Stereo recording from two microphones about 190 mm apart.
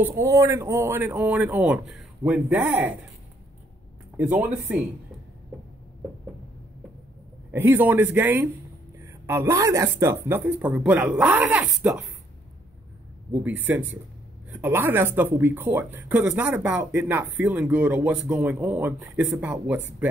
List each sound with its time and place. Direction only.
0.0 s speech: 15° right (ahead or behind)
4.2 s speech: 5° right (ahead or behind)
7.5 s speech: 10° right (ahead or behind)
13.3 s speech: 10° right (ahead or behind)